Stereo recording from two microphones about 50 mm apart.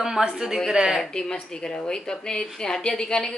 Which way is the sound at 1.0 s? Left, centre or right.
Centre.